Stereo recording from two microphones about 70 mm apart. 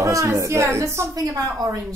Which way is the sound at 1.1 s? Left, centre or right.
Right.